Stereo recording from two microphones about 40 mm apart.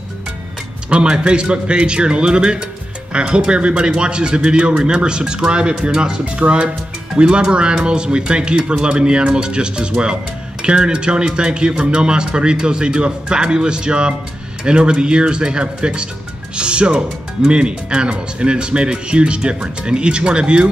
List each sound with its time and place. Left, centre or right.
0.8 s speech: right